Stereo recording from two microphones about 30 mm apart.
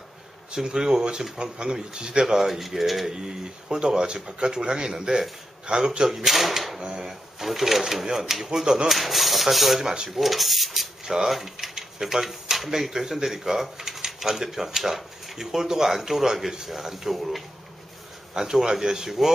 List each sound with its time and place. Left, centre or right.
0.7 s a man's voice: right
2.2 s speech: centre
3.1 s speech: centre
6.0 s speech: centre
6.8 s speech: right
7.1 s speech: centre
8.5 s speech: right
8.8 s speech: centre